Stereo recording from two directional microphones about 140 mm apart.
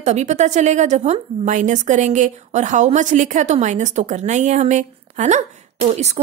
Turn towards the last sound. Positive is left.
turn(degrees=-50)  # may be behind; listen again after turning